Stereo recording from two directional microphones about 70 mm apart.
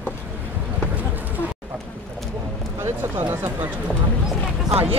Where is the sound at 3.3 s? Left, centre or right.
Right.